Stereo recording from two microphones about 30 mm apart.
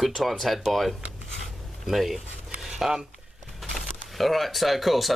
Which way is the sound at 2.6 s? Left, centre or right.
Centre.